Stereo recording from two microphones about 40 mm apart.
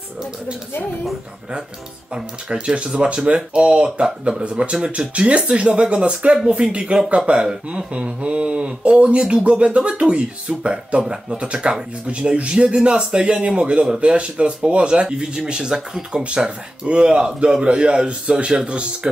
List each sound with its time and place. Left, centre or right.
2.1 s speech: right
16.3 s speech: right